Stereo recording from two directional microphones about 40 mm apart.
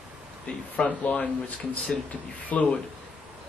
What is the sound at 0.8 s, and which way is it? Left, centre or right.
Speech, left.